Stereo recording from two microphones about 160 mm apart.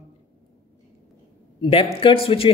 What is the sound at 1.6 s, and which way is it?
Speech, 35° left (ahead or behind).